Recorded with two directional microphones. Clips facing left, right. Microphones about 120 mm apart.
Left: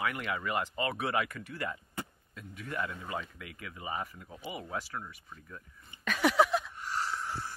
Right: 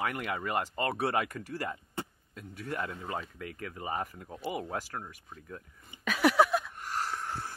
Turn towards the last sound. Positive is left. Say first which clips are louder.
# even
turn(degrees=-50)  # may be behind; listen again after turning